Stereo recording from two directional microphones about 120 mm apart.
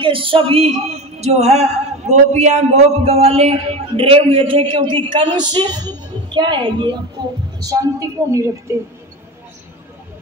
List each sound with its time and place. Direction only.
0.0 s a woman's voice: 45° right (ahead or behind); by 8.7 s 25° right (ahead or behind)